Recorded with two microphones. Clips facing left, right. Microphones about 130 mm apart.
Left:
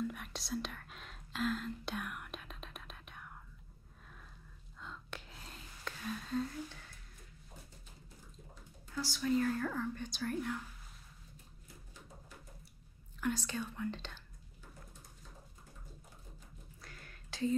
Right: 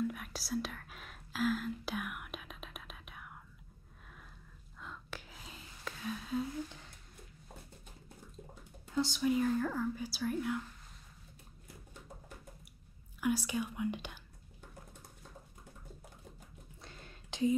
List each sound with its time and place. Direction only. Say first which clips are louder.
0.0 s whispering: right 3 dB; centre (ahead or behind)
4.7 s whispering: right 1 dB; 5° right (ahead or behind)
8.9 s a woman's voice: right 2 dB; 20° right (ahead or behind); by 10.6 s 5° right (ahead or behind)
13.2 s a woman's voice: right 4 dB; 10° right (ahead or behind)
16.8 s a sound: right 3 dB; 25° right (ahead or behind)